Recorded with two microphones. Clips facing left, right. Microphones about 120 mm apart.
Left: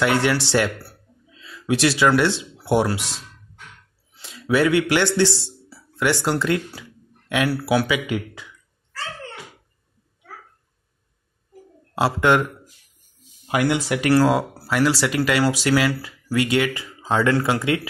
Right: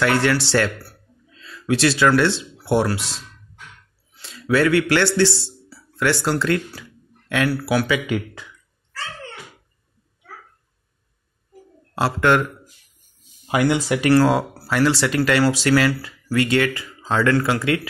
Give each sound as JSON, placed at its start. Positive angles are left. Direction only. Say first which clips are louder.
{"t": 0.0, "sound": "speech", "louder": "right 1 dB", "side_deg": 15}
{"t": 7.8, "sound": "speech", "louder": "right 1 dB", "side_deg": 5}
{"t": 11.9, "sound": "speech", "louder": "even", "side_deg": 15}
{"t": 13.5, "sound": "speech", "louder": "right 2 dB", "side_deg": 0}